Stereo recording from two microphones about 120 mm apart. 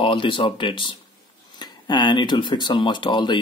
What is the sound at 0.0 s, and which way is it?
Speech, 45° left (ahead or behind).